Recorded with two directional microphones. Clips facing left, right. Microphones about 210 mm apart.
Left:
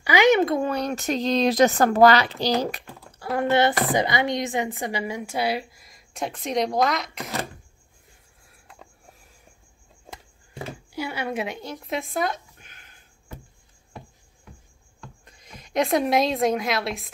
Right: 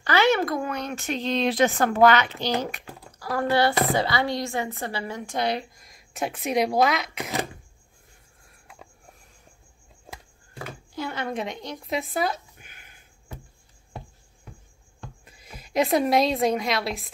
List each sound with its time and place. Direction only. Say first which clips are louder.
0.0 s speech: left 3 dB; 15° left (ahead or behind); by 2.8 s 35° left (ahead or behind)
3.1 s a woman's voice: left 2 dB; 25° left (ahead or behind); by 7.2 s 5° right (ahead or behind)
8.5 s a sound: even; 5° right (ahead or behind)
10.9 s zipper: left 1 dB; 10° left (ahead or behind); by 13.4 s 10° right (ahead or behind)
15.2 s a woman's voice: right 1 dB; 5° right (ahead or behind)